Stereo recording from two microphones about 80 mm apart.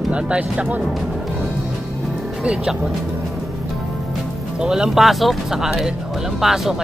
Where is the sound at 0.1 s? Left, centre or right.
Centre.